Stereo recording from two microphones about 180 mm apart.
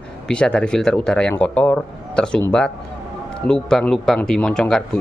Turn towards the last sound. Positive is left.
turn(degrees=5)  # may be behind; listen again after turning